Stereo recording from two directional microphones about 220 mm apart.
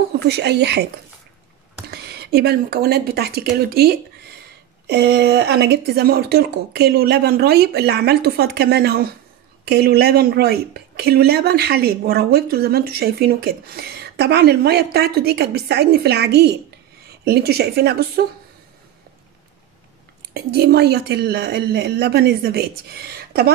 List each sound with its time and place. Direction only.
0.3 s a woman's voice: 50° right (ahead or behind)
1.9 s a woman's voice: 45° right (ahead or behind)
20.3 s a woman's voice: 45° right (ahead or behind)